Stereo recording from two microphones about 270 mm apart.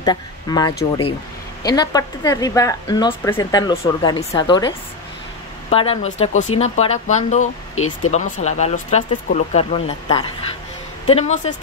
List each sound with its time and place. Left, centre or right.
0.0 s speech: centre
7.7 s speech: left
8.1 s speech: left